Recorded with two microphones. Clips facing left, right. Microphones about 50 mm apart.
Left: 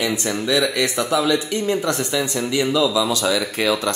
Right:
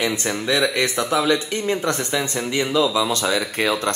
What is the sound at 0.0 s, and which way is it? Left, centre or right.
Speech, right.